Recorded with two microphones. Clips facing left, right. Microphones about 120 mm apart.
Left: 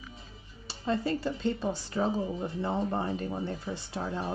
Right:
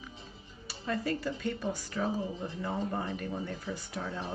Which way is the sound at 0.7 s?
25° left (ahead or behind).